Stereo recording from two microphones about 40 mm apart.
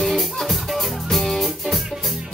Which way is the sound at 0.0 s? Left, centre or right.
Centre.